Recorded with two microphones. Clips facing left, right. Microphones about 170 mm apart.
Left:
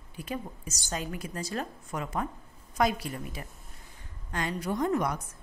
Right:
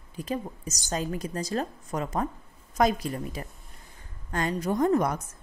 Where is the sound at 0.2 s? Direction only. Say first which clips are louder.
Right 4 dB; 40° right (ahead or behind).